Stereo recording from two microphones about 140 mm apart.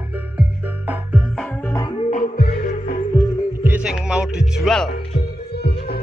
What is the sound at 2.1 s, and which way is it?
Music, 90° left.